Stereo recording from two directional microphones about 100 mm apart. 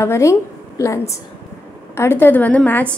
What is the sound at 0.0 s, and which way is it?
A woman's voice, 30° left (ahead or behind).